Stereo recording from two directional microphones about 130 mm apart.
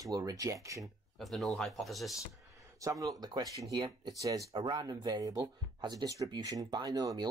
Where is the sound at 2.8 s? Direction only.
25° right (ahead or behind).